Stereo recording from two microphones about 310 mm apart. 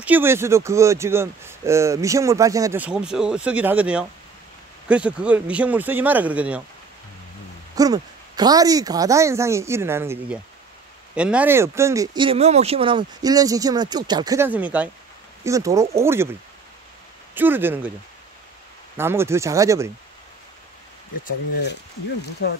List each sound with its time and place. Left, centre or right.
0.0 s speech: centre
7.7 s speech: centre
17.3 s speech: centre
18.9 s speech: centre
21.2 s speech: left